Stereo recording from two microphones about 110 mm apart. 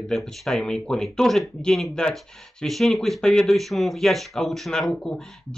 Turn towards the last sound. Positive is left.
turn(degrees=5)  # may be behind; listen again after turning